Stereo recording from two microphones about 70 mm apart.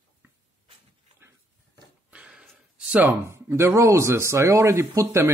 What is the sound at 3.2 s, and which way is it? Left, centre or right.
Speech, right.